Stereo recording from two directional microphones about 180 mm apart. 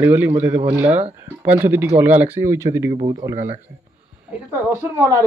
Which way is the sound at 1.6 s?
10° right (ahead or behind).